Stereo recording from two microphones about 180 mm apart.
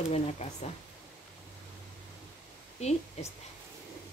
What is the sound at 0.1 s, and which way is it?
Speech, 35° left (ahead or behind).